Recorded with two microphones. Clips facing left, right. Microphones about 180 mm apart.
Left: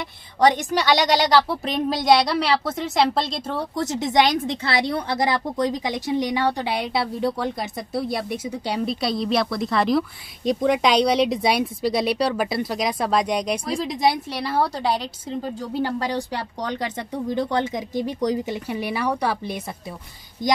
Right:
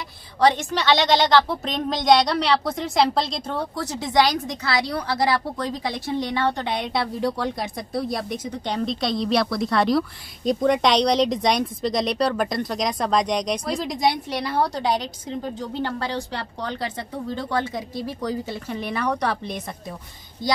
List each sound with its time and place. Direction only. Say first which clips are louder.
0.4 s a woman's voice: left 1 dB; 15° left (ahead or behind)
3.7 s a woman's voice: left 2 dB; 20° left (ahead or behind)